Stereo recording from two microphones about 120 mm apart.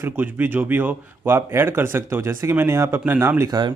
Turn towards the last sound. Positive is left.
turn(degrees=-20)  # may be behind; listen again after turning